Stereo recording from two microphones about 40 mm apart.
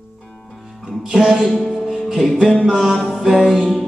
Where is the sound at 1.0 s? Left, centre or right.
Centre.